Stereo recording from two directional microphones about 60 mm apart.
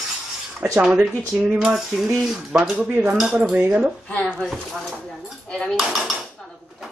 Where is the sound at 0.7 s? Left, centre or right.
Centre.